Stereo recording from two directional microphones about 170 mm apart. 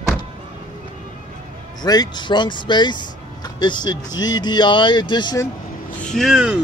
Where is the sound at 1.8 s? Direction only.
25° left (ahead or behind).